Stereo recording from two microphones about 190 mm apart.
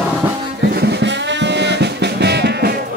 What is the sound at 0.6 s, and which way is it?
Music, 60° right (ahead or behind).